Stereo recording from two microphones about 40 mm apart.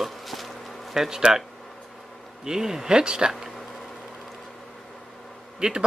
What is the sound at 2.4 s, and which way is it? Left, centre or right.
Speech, centre.